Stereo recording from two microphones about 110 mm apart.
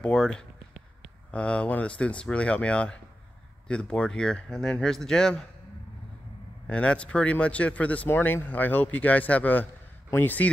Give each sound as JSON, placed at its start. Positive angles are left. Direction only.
{"t": 0.0, "sound": "speech", "side_deg": 5}
{"t": 6.7, "sound": "speech", "side_deg": 10}